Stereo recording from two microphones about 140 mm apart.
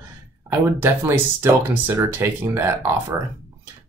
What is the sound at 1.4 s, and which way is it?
Speech, 20° right (ahead or behind).